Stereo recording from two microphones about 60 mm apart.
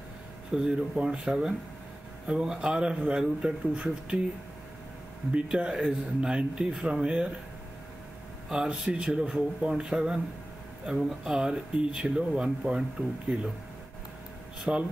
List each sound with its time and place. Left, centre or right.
0.5 s a man's voice: centre
5.3 s a man's voice: centre
8.5 s a man's voice: centre
14.6 s a man's voice: centre